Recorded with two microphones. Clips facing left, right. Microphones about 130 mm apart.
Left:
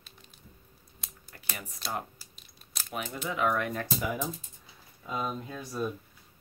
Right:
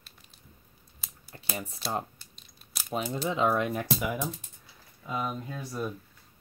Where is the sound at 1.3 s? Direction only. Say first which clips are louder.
Right 6 dB; 30° right (ahead or behind).